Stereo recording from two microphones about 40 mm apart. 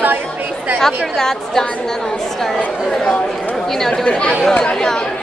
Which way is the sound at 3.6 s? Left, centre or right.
Centre.